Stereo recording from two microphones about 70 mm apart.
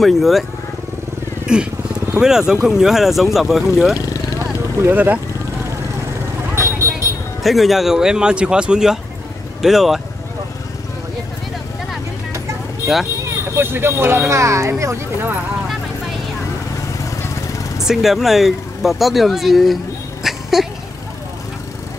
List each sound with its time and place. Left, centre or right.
0.0 s speech: centre
1.5 s speech: centre
4.8 s speech: right
6.5 s vehicle: right
7.4 s speech: centre
13.6 s speech: right
17.8 s speech: centre
20.2 s a sound: centre